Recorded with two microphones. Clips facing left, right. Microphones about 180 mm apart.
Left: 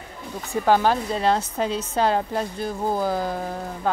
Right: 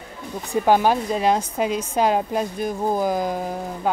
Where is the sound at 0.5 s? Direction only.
15° right (ahead or behind).